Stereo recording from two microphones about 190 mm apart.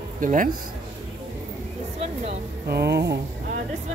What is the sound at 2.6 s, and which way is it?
Speech, 60° right (ahead or behind).